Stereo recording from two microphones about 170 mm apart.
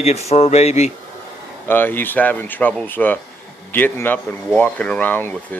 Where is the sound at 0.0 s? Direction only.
40° left (ahead or behind).